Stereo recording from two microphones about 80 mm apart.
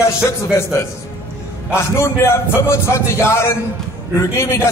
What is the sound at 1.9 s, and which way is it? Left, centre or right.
A man's voice, left.